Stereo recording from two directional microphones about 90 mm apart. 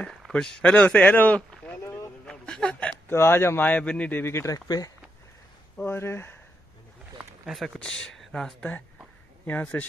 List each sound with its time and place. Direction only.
0.3 s speech: 10° left (ahead or behind)
1.8 s a sound: 30° left (ahead or behind)
2.2 s a sound: 10° left (ahead or behind)
3.1 s speech: 25° left (ahead or behind)
4.2 s speech: 30° left (ahead or behind)
4.6 s speech: 45° left (ahead or behind)
5.9 s speech: 25° left (ahead or behind)
7.4 s speech: centre (ahead or behind)
9.5 s speech: 15° left (ahead or behind)